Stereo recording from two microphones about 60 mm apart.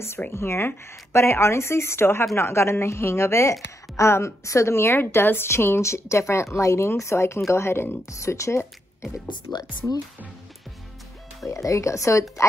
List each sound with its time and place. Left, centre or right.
0.3 s speech: left
4.9 s speech: left
8.1 s speech: left
11.4 s speech: left